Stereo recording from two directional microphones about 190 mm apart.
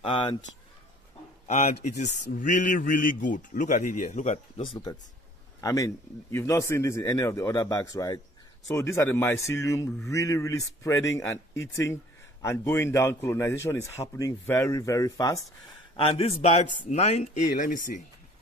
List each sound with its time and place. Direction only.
0.0 s speech: 25° left (ahead or behind)
1.5 s a man's voice: 40° left (ahead or behind)
5.6 s speech: 15° left (ahead or behind)
16.0 s speech: 30° left (ahead or behind)